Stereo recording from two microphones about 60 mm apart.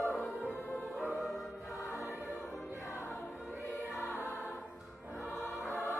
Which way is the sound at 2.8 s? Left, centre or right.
Left.